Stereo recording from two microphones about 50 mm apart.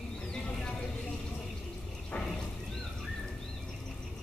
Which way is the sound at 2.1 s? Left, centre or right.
Centre.